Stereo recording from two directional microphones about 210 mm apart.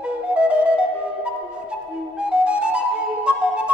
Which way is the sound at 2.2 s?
5° right (ahead or behind).